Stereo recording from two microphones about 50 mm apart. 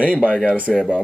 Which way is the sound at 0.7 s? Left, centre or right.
Centre.